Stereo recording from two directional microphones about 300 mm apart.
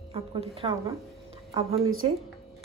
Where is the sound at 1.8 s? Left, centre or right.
Right.